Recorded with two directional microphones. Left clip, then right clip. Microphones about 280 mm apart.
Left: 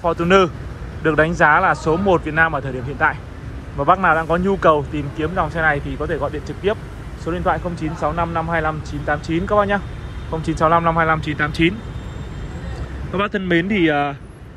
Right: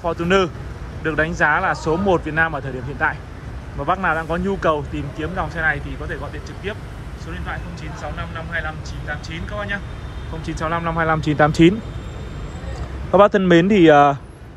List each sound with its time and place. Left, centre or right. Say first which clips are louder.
0.0 s a man's voice: left 3 dB; centre
10.4 s speech: left 7 dB; centre; by 11.7 s right
13.1 s speech: right 7 dB; centre